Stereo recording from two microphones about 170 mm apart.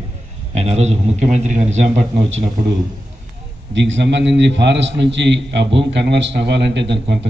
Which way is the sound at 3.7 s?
90° right.